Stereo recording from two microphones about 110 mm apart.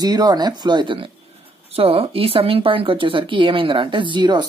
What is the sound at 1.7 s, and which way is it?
Speech, 60° right (ahead or behind).